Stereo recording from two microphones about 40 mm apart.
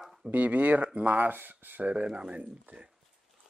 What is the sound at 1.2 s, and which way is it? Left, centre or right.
Speech, right.